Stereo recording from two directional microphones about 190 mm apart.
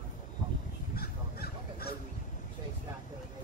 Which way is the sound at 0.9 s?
55° left (ahead or behind).